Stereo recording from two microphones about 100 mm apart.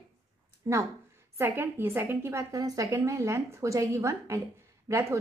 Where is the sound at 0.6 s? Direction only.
30° right (ahead or behind).